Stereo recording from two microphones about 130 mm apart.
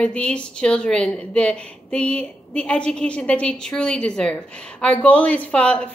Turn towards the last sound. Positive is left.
turn(degrees=10)  # may be behind; listen again after turning